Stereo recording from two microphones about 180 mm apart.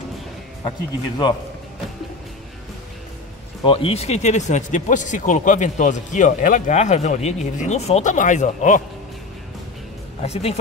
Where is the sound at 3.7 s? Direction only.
30° left (ahead or behind).